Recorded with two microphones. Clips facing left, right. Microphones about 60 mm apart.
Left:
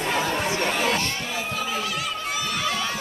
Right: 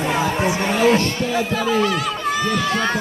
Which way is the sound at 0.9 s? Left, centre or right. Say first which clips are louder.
Right 8 dB; right.